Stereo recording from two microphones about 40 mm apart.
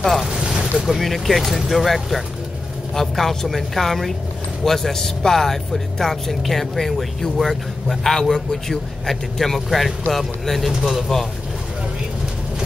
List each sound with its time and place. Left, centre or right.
0.0 s a man's voice: centre
0.3 s boat: centre
0.7 s a man's voice: centre